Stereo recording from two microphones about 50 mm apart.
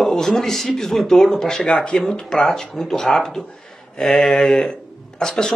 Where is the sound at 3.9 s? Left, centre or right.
Centre.